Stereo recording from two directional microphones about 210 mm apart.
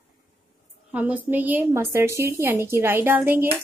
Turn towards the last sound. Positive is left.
turn(degrees=-10)  # may be behind; listen again after turning